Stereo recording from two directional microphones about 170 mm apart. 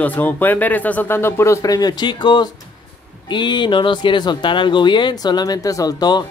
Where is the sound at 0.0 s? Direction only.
10° left (ahead or behind).